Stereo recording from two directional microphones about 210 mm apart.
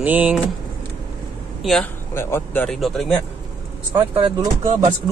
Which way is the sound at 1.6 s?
Centre (ahead or behind).